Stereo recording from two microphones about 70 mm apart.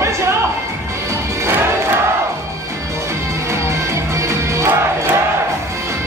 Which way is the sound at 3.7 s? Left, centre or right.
Right.